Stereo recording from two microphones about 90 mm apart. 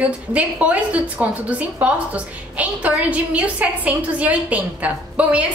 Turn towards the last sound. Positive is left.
turn(degrees=-15)  # may be behind; listen again after turning